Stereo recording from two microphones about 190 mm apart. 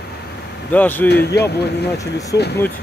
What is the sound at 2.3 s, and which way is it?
Speech, 65° left (ahead or behind).